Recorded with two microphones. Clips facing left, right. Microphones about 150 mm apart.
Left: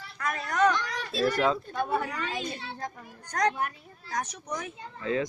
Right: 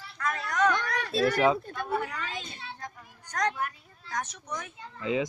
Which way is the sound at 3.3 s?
15° left (ahead or behind).